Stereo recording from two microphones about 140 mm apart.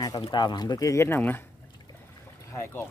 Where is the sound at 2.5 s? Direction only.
20° left (ahead or behind).